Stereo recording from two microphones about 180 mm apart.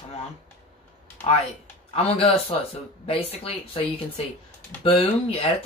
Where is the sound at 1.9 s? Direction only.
35° left (ahead or behind).